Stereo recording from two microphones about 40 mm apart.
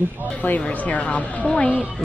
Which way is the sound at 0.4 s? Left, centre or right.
Left.